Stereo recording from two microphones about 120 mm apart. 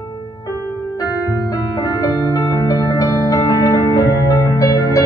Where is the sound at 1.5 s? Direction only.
30° left (ahead or behind).